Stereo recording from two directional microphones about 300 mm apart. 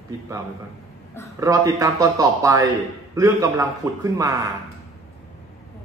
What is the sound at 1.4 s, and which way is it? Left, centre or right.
Speech, centre.